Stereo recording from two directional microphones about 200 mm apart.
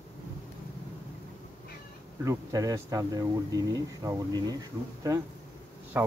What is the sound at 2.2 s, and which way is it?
Speech, 15° right (ahead or behind).